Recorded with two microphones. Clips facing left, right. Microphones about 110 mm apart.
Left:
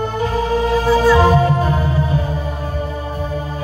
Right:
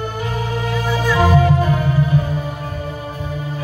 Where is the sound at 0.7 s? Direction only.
35° left (ahead or behind).